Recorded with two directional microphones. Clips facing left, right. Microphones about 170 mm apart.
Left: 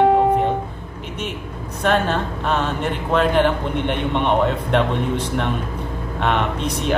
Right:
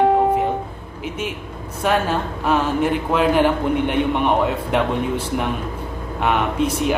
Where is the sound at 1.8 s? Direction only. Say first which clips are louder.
Even; 10° right (ahead or behind).